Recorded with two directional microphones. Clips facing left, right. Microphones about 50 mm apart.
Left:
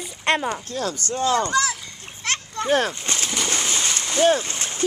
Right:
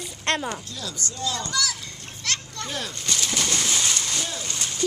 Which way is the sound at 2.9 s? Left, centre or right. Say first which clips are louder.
Left 1 dB; left.